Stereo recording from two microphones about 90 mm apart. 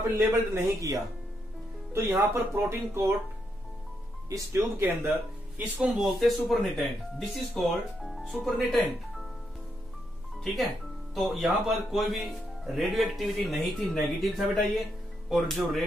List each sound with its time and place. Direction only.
0.1 s speech: 35° right (ahead or behind)
2.3 s speech: 30° right (ahead or behind)
4.3 s speech: 30° right (ahead or behind)
5.6 s speech: 15° right (ahead or behind)
5.9 s speech: centre (ahead or behind)
10.4 s speech: centre (ahead or behind)